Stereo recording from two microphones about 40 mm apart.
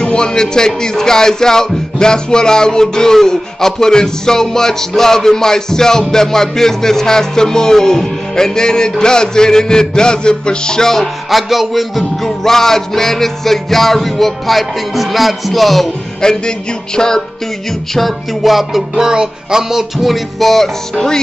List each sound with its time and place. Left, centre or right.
0.0 s music: left
11.2 s music: centre
12.4 s music: centre
16.2 s music: centre
17.9 s music: centre